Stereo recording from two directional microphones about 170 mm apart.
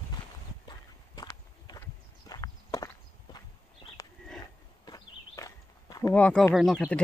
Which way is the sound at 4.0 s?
20° left (ahead or behind).